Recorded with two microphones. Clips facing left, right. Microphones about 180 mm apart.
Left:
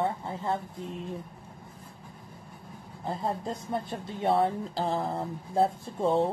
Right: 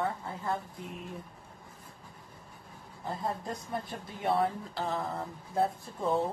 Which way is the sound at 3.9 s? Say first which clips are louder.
Left 4 dB; 25° left (ahead or behind).